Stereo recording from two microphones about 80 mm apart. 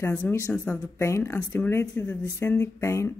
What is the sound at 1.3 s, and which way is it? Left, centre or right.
Speech, centre.